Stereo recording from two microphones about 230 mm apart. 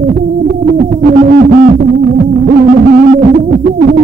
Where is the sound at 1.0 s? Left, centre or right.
Right.